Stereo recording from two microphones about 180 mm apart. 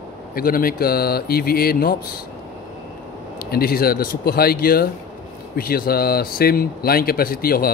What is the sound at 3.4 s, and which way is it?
Speech, 60° left (ahead or behind).